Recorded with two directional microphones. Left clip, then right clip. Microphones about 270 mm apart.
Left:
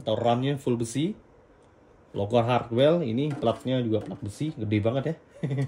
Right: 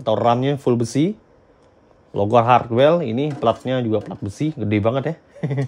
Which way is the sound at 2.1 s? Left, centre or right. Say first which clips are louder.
Right 10 dB; right.